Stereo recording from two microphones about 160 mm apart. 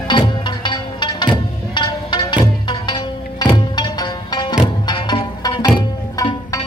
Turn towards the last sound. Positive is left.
turn(degrees=25)  # may be behind; listen again after turning